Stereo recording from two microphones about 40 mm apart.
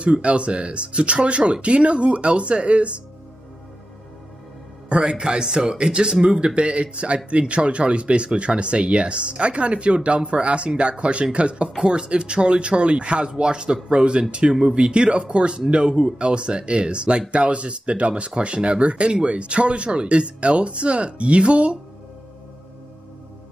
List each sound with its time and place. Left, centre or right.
0.0 s speech: right
4.8 s speech: right